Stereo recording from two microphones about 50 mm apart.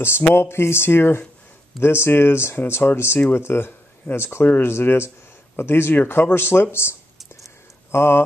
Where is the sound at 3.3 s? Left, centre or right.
Left.